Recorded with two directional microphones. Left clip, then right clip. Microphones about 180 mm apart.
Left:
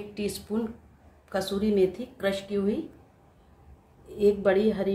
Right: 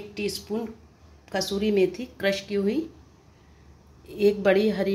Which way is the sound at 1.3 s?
45° right (ahead or behind).